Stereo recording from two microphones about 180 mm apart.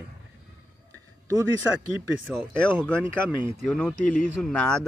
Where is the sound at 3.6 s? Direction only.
5° left (ahead or behind).